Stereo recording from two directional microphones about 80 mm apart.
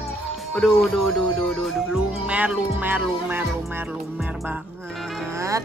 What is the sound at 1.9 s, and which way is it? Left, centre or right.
Music, centre.